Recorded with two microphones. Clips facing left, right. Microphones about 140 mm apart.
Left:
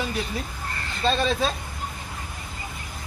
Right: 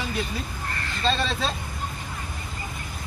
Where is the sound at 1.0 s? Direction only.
10° left (ahead or behind).